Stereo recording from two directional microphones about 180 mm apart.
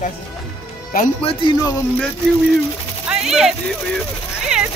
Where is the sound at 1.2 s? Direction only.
20° left (ahead or behind).